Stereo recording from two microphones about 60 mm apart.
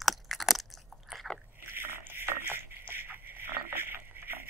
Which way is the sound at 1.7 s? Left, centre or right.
Right.